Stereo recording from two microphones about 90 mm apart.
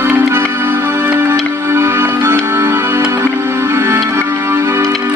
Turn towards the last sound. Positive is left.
turn(degrees=-30)  # may be behind; listen again after turning